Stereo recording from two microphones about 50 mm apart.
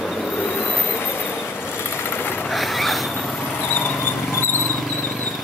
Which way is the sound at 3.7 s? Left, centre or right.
Left.